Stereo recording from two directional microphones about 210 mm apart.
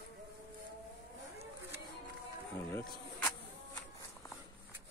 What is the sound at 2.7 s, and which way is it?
Speech, 10° left (ahead or behind).